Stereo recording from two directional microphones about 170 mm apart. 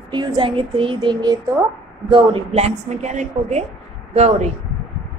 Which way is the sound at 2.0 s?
35° right (ahead or behind).